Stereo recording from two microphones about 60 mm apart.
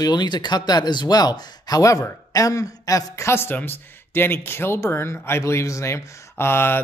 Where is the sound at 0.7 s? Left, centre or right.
Left.